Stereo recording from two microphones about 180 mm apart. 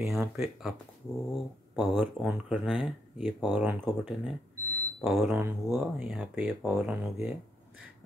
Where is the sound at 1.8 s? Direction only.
10° right (ahead or behind).